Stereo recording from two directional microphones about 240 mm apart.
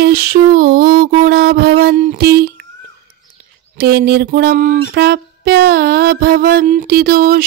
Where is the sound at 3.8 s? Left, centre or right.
Right.